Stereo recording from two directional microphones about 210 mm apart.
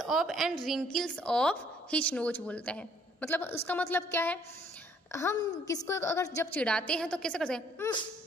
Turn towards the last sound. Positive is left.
turn(degrees=5)  # may be behind; listen again after turning